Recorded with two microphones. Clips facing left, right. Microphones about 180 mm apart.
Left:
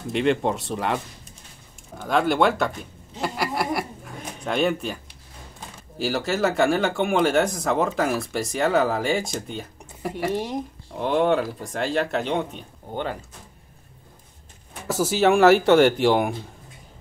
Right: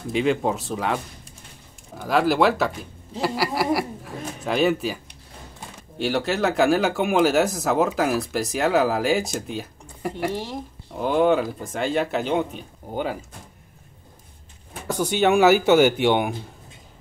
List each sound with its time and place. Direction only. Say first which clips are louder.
0.0 s speech: even; centre (ahead or behind)
10.3 s speech: left 3 dB; 20° left (ahead or behind)
11.0 s speech: right 1 dB; centre (ahead or behind)
14.9 s speech: left 1 dB; 5° left (ahead or behind)